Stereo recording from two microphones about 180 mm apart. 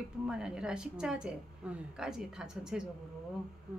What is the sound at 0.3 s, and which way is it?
A woman's voice, 5° right (ahead or behind).